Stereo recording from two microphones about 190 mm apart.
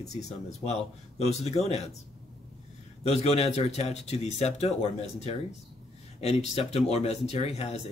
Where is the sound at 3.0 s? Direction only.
35° left (ahead or behind).